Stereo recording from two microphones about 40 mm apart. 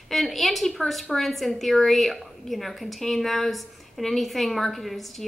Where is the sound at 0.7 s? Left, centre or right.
Centre.